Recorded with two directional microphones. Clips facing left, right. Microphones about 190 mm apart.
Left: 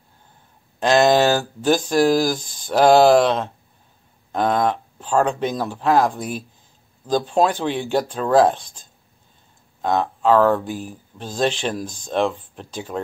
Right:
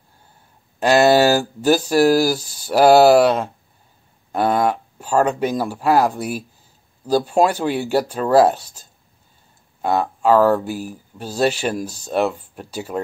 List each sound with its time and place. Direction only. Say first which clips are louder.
0.7 s speech: right 2 dB; 10° right (ahead or behind)